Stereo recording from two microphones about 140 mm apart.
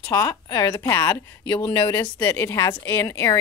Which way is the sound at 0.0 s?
25° left (ahead or behind).